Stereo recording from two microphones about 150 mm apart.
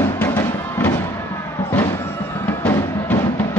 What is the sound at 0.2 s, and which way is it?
Music, 15° left (ahead or behind).